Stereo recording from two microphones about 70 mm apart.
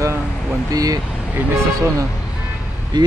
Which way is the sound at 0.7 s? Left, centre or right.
Right.